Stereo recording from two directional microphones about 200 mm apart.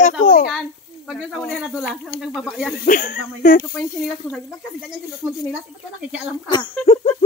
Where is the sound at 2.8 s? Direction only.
45° left (ahead or behind).